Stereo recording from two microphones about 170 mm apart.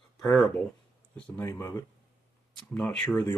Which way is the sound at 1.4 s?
20° left (ahead or behind).